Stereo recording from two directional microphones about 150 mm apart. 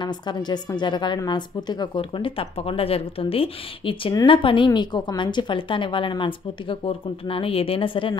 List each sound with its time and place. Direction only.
0.0 s a woman's voice: 30° left (ahead or behind)